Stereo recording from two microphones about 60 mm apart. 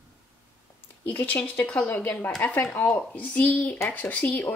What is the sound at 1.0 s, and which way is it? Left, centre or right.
Speech, left.